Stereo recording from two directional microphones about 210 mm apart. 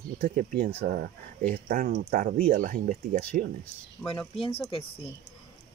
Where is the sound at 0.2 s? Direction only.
40° right (ahead or behind).